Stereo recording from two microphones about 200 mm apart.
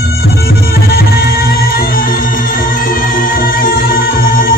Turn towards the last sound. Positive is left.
turn(degrees=45)  # may be behind; listen again after turning